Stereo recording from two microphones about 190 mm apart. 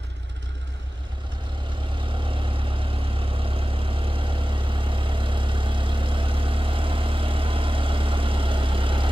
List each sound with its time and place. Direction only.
2.0 s vehicle: 25° right (ahead or behind)